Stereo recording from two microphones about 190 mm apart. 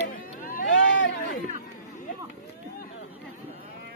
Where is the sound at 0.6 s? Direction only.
85° left.